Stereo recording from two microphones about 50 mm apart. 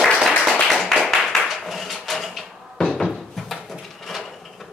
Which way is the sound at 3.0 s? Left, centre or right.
Centre.